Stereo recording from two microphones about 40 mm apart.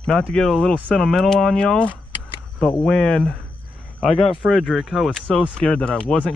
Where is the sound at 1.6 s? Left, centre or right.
Left.